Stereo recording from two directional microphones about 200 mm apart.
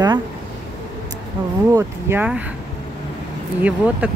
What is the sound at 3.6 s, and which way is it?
Speech, 5° right (ahead or behind).